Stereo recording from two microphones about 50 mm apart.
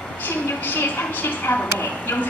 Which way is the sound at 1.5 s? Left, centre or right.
Left.